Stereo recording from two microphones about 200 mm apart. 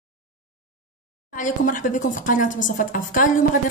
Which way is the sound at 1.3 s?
40° left (ahead or behind).